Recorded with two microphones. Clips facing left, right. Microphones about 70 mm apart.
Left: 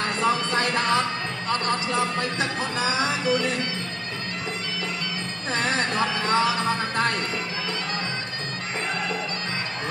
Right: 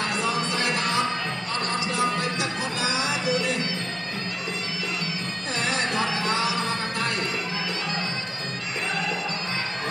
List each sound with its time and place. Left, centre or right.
0.2 s music: left
6.2 s music: left